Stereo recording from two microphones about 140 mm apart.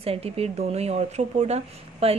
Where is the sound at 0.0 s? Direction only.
45° right (ahead or behind).